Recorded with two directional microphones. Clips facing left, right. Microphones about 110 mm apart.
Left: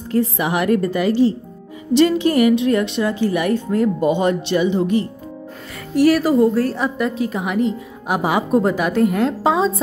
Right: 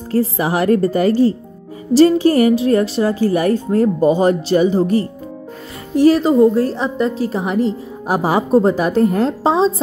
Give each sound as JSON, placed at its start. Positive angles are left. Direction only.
{"t": 0.1, "sound": "a woman's voice", "side_deg": -35}
{"t": 5.9, "sound": "a woman's voice", "side_deg": -25}